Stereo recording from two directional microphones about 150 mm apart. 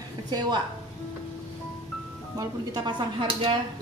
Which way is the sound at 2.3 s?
30° right (ahead or behind).